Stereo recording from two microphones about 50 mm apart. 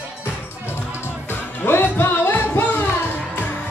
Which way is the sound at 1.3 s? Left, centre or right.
Left.